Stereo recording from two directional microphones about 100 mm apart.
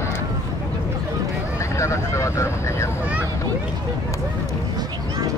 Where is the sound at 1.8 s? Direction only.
30° left (ahead or behind).